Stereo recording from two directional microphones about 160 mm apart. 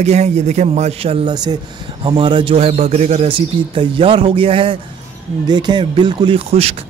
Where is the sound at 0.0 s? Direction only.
45° right (ahead or behind).